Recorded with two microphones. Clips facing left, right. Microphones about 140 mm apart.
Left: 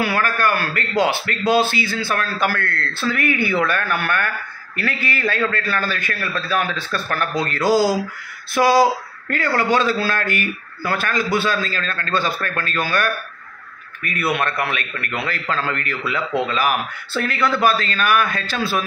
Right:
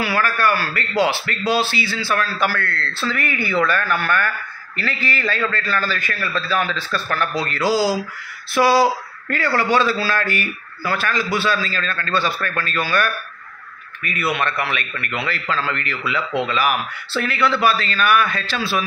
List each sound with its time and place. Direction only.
0.0 s a man's voice: 50° left (ahead or behind)
14.3 s a man's voice: 50° left (ahead or behind)